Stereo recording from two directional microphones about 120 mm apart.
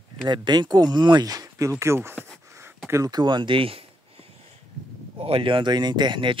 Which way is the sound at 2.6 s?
20° right (ahead or behind).